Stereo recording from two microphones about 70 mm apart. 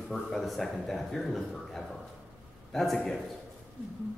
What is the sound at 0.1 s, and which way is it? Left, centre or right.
A man's voice, centre.